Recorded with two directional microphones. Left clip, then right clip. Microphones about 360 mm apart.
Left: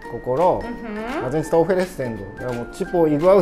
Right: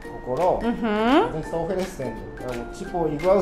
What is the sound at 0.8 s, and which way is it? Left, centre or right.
Speech, right.